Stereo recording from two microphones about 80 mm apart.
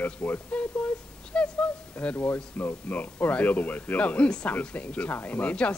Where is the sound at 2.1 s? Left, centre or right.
Left.